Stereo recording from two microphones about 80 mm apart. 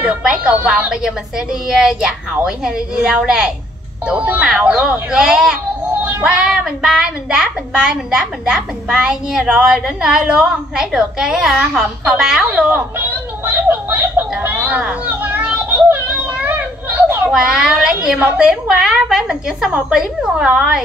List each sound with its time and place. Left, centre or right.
0.0 s a woman's voice: centre
12.4 s a sound: centre
14.4 s child singing: right
17.3 s a woman's voice: centre